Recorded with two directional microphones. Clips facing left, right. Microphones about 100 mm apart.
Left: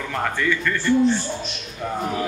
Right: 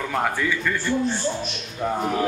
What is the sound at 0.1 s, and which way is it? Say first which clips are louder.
Speech: left 2 dB; 10° right (ahead or behind).